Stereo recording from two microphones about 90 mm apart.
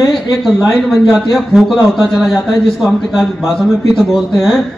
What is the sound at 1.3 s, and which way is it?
A man's voice, 5° right (ahead or behind).